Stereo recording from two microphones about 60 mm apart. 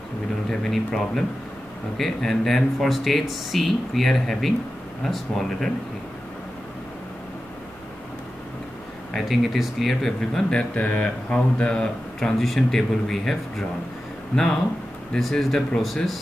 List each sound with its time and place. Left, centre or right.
0.5 s speech: centre
9.1 s speech: centre
10.5 s speech: left; by 13.7 s centre
14.3 s speech: left
15.1 s speech: centre